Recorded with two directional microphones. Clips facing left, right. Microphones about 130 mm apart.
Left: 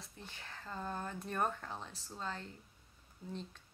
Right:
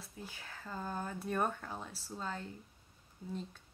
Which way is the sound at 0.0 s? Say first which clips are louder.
Right 3 dB; 5° right (ahead or behind).